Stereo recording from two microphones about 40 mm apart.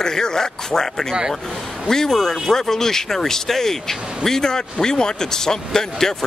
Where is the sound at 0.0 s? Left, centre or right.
Centre.